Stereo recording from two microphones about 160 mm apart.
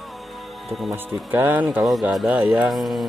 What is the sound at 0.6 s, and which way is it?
Speech, centre (ahead or behind).